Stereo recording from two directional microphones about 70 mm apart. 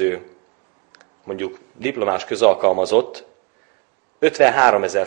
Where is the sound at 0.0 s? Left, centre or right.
Right.